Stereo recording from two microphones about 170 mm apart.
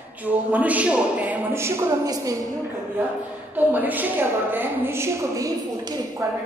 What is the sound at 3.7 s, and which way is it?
A man's voice, 10° right (ahead or behind).